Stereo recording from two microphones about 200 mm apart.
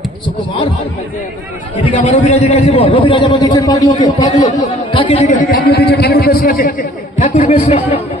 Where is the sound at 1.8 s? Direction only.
30° left (ahead or behind).